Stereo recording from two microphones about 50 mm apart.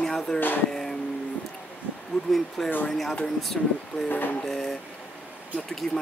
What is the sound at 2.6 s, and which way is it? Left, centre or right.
Speech, centre.